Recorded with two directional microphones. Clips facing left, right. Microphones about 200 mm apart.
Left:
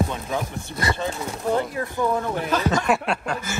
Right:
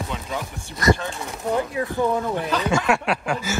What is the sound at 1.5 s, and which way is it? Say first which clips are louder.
Speech: right 2 dB; 15° right (ahead or behind).